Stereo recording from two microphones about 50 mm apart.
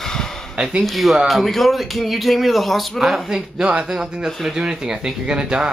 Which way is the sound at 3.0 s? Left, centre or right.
Centre.